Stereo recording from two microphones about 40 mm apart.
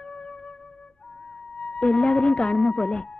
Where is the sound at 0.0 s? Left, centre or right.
Left.